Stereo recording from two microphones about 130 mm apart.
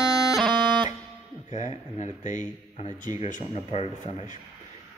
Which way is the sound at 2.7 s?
55° left (ahead or behind).